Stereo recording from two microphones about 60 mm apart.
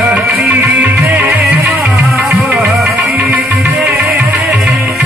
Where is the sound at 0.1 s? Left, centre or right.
Right.